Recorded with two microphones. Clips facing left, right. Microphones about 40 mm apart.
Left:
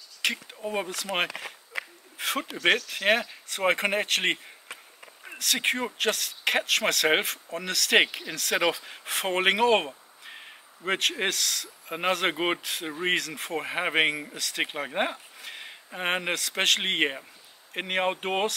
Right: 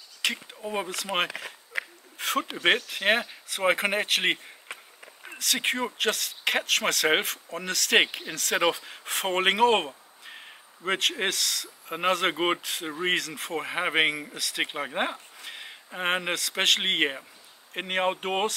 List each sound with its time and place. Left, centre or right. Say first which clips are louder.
0.2 s speech: left 1 dB; centre
1.1 s a sound: right 1 dB; centre
2.5 s speech: left 1 dB; centre